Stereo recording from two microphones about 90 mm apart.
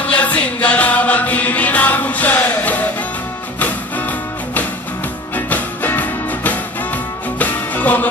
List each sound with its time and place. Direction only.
0.1 s music: 15° left (ahead or behind)
5.3 s music: 20° left (ahead or behind)